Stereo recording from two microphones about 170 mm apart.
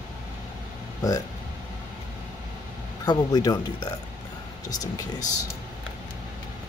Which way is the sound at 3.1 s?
25° left (ahead or behind).